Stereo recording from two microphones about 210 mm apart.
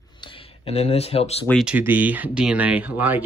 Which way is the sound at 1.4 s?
Centre (ahead or behind).